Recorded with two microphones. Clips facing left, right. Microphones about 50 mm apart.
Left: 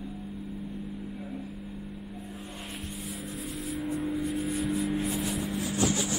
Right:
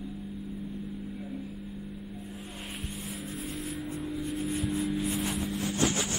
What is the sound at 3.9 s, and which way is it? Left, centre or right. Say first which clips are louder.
Vehicle: left 4 dB; centre.